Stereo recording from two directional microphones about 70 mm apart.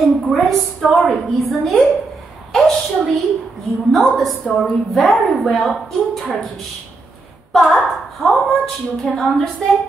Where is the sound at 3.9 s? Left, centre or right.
Centre.